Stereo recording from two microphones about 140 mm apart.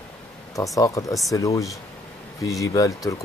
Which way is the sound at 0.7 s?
25° left (ahead or behind).